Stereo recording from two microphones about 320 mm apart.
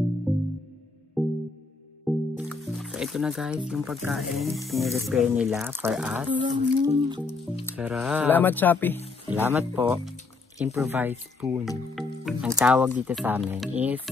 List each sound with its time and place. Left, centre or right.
0.3 s music: centre
2.7 s speech: centre
6.4 s speech: centre
7.2 s speech: centre
7.7 s speech: centre
9.3 s speech: centre